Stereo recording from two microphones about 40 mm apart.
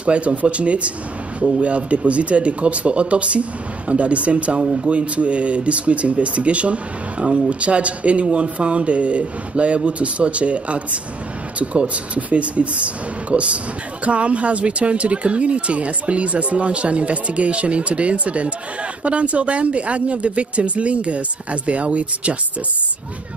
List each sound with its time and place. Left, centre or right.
0.0 s speech: right